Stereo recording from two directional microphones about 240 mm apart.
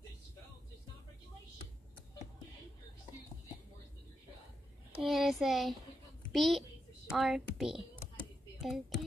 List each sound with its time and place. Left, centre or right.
5.0 s a child's voice: centre